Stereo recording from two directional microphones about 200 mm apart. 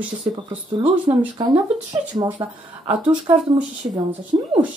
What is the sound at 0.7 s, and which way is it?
Speech, 20° right (ahead or behind).